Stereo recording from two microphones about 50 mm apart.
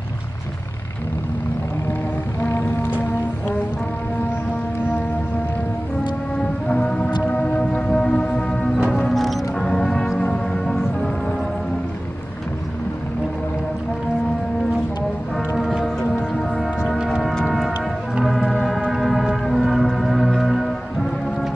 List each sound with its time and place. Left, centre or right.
6.3 s music: left; by 9.4 s centre
9.6 s music: centre
15.5 s music: centre
17.2 s music: centre
18.2 s music: centre